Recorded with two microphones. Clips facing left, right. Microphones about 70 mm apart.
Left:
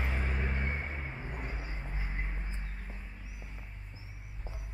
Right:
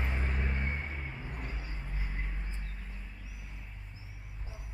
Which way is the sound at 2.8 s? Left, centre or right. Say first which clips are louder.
Left 1 dB; left.